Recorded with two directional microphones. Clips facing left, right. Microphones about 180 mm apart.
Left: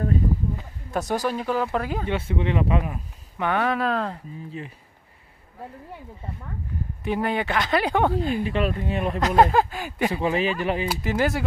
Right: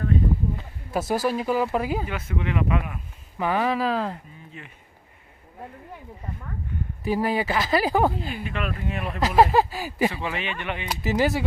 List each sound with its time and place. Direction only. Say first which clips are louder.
0.9 s speech: right 1 dB; 5° right (ahead or behind)
2.0 s speech: left 4 dB; 30° left (ahead or behind)
3.3 s speech: even; 5° right (ahead or behind)
4.5 s speech: left 8 dB; 35° left (ahead or behind)
7.1 s speech: right 1 dB; centre (ahead or behind)
8.5 s speech: left 5 dB; 30° left (ahead or behind)
9.2 s speech: right 1 dB; 5° right (ahead or behind)
10.1 s speech: left 7 dB; 35° left (ahead or behind)
10.9 s speech: right 1 dB; centre (ahead or behind)